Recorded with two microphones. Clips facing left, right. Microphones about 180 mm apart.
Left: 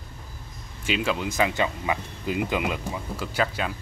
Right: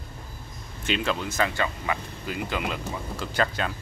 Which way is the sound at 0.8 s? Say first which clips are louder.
Left 1 dB; 10° left (ahead or behind).